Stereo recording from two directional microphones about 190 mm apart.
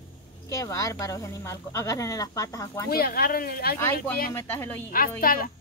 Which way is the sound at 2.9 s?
50° left (ahead or behind).